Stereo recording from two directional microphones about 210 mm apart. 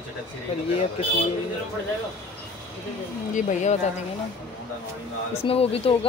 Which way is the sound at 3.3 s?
35° left (ahead or behind).